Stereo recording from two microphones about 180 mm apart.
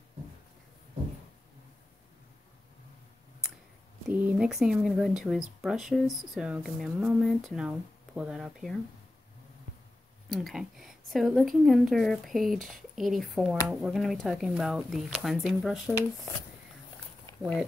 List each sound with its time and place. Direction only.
4.1 s speech: 10° right (ahead or behind)
10.3 s speech: centre (ahead or behind)
17.4 s speech: 5° left (ahead or behind)